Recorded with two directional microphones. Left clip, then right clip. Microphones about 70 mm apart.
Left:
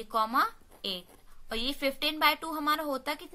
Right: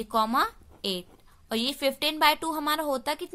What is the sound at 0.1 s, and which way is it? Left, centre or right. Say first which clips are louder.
A woman's voice: right 2 dB; right.